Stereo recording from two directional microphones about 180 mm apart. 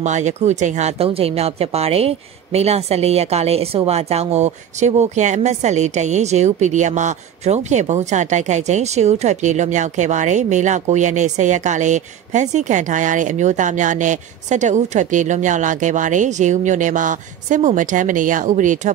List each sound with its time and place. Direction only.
0.0 s speech: 40° right (ahead or behind)